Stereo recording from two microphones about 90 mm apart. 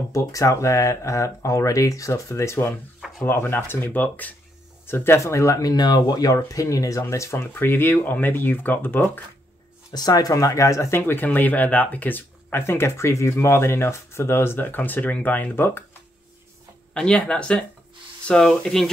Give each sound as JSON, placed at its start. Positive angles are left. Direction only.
{"t": 0.1, "sound": "speech", "side_deg": 35}
{"t": 9.9, "sound": "speech", "side_deg": 45}
{"t": 16.9, "sound": "speech", "side_deg": 10}